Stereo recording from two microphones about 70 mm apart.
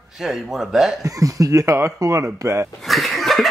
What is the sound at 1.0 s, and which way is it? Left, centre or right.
Speech, right.